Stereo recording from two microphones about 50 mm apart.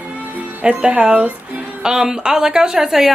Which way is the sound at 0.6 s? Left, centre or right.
Right.